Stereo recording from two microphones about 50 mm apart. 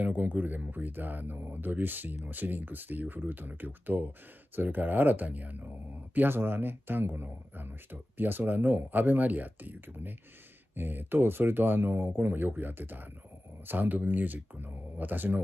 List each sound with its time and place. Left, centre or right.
0.0 s speech: right
6.1 s speech: right